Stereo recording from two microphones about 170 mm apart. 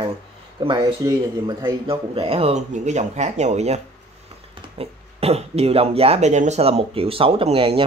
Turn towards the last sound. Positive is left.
turn(degrees=-35)  # may be behind; listen again after turning